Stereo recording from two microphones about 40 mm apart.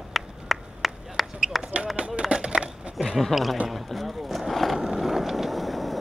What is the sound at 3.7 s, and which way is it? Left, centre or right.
Vehicle, centre.